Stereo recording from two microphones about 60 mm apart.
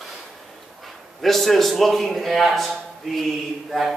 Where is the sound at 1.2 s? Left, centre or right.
Centre.